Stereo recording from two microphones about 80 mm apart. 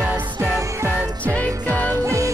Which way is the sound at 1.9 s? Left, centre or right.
Right.